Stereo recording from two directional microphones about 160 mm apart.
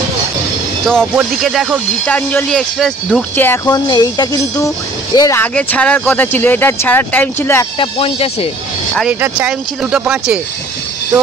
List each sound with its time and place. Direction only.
0.8 s speech: centre (ahead or behind)
2.0 s speech: 10° left (ahead or behind)
3.6 s speech: 25° left (ahead or behind)
5.4 s speech: 10° left (ahead or behind)
7.8 s speech: 35° left (ahead or behind)
9.2 s speech: 10° right (ahead or behind)